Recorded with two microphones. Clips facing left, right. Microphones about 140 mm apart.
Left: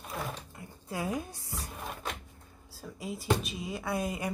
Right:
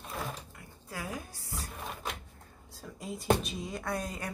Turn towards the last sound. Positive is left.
turn(degrees=10)  # may be behind; listen again after turning